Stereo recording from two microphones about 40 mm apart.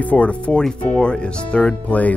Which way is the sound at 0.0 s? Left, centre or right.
Left.